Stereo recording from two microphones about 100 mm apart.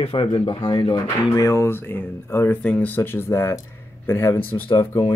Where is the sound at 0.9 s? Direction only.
35° left (ahead or behind).